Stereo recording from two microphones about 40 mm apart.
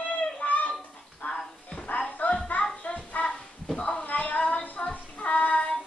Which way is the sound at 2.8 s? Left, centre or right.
Left.